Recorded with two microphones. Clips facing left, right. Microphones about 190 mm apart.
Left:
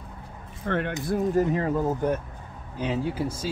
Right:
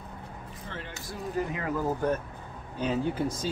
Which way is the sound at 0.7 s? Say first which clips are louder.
Left 15 dB; 60° left (ahead or behind).